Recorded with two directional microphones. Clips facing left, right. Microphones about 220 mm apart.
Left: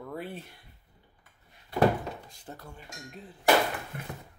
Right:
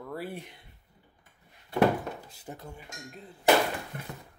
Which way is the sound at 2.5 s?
15° right (ahead or behind).